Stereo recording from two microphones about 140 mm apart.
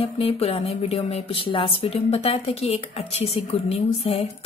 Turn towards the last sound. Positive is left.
turn(degrees=50)  # may be behind; listen again after turning